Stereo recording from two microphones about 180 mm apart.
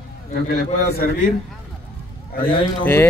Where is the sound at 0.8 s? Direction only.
60° left (ahead or behind).